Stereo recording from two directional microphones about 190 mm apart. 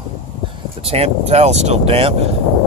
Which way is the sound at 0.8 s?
30° right (ahead or behind).